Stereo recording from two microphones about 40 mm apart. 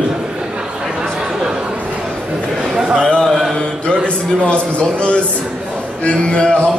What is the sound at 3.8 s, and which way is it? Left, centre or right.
A man's voice, left.